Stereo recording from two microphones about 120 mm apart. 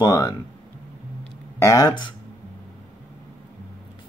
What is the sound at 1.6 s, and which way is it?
Speech, 30° left (ahead or behind).